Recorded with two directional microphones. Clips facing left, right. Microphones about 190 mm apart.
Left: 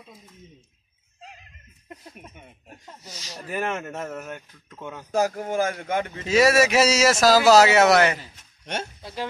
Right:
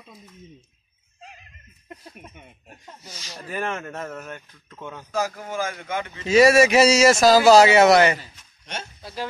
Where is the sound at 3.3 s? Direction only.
10° left (ahead or behind).